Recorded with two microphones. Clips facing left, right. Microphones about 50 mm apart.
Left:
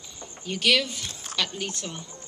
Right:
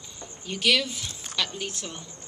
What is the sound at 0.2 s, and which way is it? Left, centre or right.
Speech, centre.